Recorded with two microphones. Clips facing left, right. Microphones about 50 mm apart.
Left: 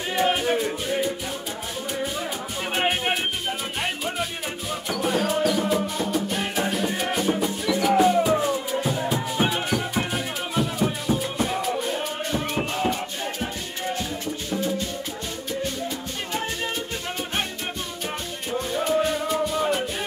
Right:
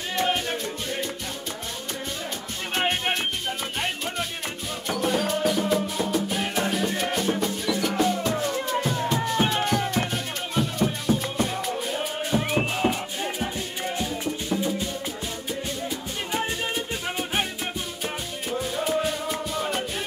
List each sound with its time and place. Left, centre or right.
0.1 s music: centre
2.7 s music: centre
16.3 s music: centre
18.5 s music: centre